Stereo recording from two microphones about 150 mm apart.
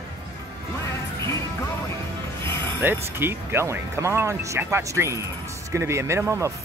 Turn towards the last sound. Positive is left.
turn(degrees=-20)  # may be behind; listen again after turning